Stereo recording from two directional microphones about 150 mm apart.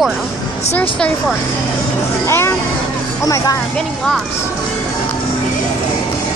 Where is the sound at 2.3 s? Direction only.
15° left (ahead or behind).